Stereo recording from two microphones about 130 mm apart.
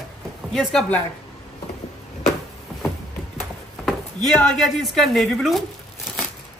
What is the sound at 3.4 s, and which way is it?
Speech, centre (ahead or behind).